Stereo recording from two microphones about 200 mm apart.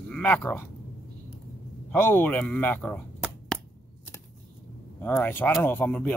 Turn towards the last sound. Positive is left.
turn(degrees=10)  # may be behind; listen again after turning